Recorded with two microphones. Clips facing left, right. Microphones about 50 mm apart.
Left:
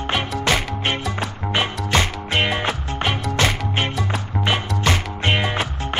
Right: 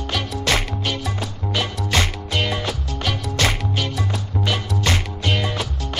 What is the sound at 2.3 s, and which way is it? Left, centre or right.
Music, left.